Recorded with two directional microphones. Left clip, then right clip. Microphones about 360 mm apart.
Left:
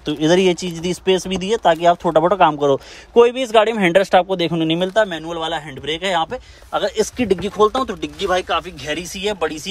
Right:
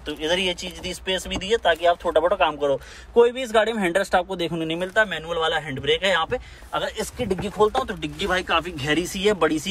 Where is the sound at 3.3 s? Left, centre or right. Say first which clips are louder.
Left 6 dB; centre.